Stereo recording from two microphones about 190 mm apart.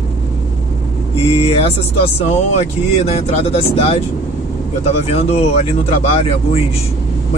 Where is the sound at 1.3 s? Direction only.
30° left (ahead or behind).